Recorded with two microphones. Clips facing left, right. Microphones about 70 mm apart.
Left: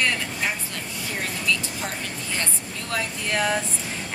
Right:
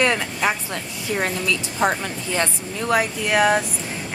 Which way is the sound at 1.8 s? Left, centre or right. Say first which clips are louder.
Right 12 dB; right.